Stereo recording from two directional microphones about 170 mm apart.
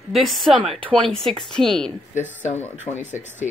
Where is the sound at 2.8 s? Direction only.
45° left (ahead or behind).